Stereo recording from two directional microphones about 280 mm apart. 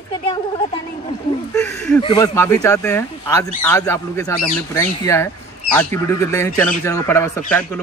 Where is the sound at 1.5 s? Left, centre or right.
Centre.